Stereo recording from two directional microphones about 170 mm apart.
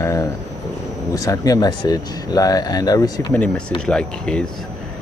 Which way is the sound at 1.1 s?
20° left (ahead or behind).